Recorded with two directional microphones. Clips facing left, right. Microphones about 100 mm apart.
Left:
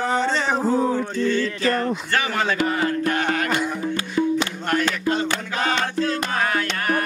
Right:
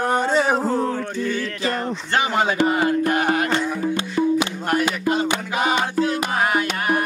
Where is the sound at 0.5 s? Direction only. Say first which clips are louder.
Left 1 dB; 5° left (ahead or behind).